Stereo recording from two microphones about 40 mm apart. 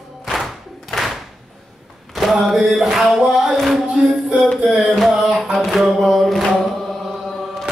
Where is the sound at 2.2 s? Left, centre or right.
Centre.